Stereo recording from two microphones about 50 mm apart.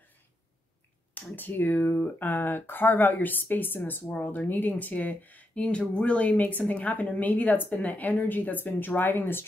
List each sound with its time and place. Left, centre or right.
1.1 s speech: left
4.0 s speech: left